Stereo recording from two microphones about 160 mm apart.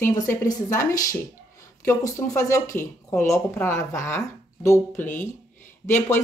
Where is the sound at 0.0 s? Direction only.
20° left (ahead or behind).